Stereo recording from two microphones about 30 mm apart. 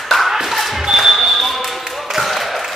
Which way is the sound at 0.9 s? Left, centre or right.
Centre.